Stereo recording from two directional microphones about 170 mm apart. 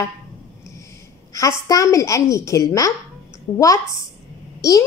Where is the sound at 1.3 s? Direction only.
20° left (ahead or behind).